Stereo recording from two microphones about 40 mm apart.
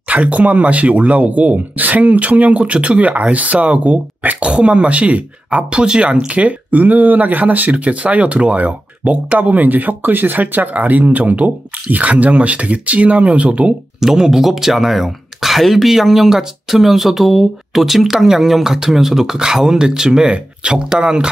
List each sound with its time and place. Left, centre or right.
0.1 s speech: right
4.4 s speech: right
6.1 s speech: right
13.9 s speech: centre